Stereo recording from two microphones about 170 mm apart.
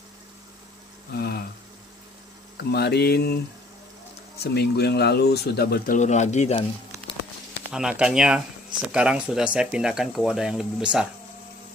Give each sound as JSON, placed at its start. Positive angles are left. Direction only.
{"t": 1.1, "sound": "a sound", "side_deg": 70}
{"t": 2.5, "sound": "speech", "side_deg": 75}
{"t": 4.4, "sound": "speech", "side_deg": 75}
{"t": 5.9, "sound": "speech", "side_deg": 45}
{"t": 7.7, "sound": "speech", "side_deg": -5}